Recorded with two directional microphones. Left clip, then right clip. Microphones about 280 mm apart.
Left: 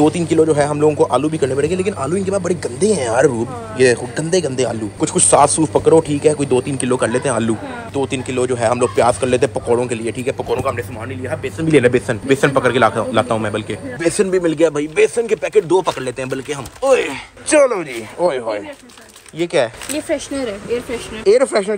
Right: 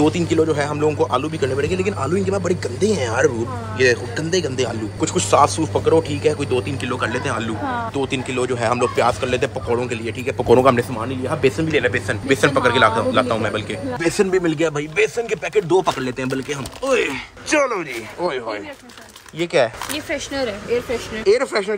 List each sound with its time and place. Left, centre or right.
0.0 s a man's voice: centre
10.5 s speech: right
11.7 s a man's voice: centre
12.1 s a man's voice: centre
13.9 s a man's voice: centre
21.3 s a man's voice: centre